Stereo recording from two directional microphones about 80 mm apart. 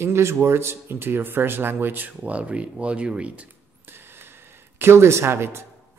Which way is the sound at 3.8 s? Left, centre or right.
Right.